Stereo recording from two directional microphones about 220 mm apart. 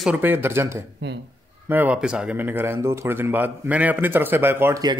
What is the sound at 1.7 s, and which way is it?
Speech, 5° right (ahead or behind).